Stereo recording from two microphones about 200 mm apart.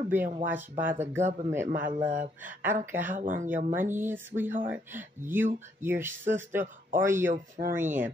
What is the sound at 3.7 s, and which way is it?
Speech, 10° right (ahead or behind).